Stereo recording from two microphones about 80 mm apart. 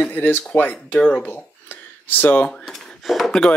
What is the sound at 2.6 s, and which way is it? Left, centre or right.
Speech, centre.